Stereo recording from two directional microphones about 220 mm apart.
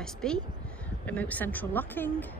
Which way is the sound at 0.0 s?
5° left (ahead or behind).